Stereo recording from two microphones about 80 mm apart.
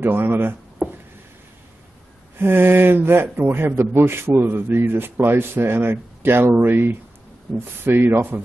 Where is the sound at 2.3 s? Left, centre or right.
Right.